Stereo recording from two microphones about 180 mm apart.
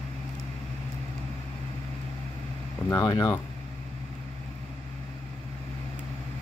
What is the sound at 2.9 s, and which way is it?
Speech, 20° left (ahead or behind).